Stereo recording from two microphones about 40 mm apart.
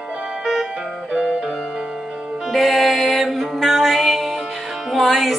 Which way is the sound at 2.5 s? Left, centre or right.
Centre.